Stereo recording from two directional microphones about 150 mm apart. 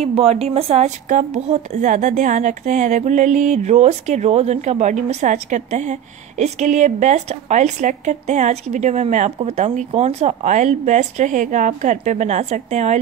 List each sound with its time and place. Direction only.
0.0 s speech: 40° right (ahead or behind)